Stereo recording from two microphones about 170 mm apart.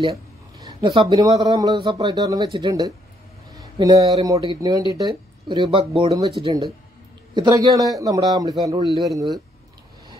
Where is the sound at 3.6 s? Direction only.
25° right (ahead or behind).